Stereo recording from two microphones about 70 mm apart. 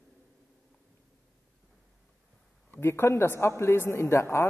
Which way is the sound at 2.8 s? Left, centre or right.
Left.